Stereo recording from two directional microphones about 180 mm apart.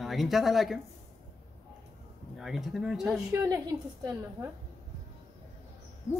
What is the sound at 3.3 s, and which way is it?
Speech, 15° right (ahead or behind).